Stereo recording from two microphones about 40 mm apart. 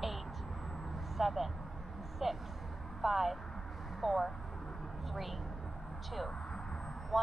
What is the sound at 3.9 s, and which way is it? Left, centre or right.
Vehicle, centre.